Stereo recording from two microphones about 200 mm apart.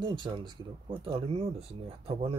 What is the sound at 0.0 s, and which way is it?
Speech, 25° right (ahead or behind).